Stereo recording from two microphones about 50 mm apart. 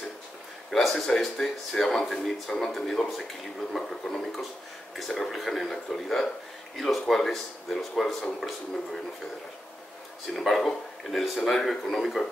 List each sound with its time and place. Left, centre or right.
0.7 s speech: centre
10.3 s speech: centre